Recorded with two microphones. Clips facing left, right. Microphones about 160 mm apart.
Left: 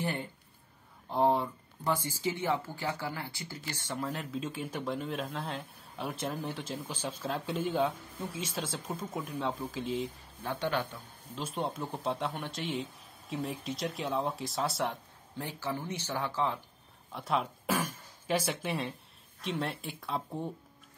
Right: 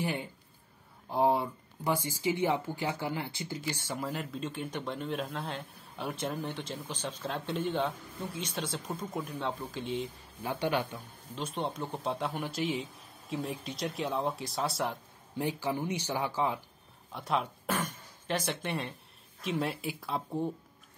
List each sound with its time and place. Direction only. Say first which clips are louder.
0.0 s speech: right 1 dB; 10° right (ahead or behind)
3.7 s speech: even; 5° right (ahead or behind)
10.4 s speech: right 2 dB; 15° right (ahead or behind)
11.3 s speech: even; centre (ahead or behind)
15.3 s speech: right 4 dB; 15° right (ahead or behind)
17.1 s speech: even; centre (ahead or behind)